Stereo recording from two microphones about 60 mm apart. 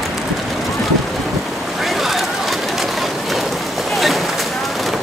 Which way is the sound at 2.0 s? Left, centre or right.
Centre.